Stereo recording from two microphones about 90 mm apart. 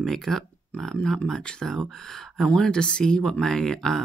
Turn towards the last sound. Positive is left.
turn(degrees=5)  # may be behind; listen again after turning